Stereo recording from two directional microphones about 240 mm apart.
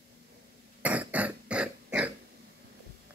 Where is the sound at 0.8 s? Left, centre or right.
Centre.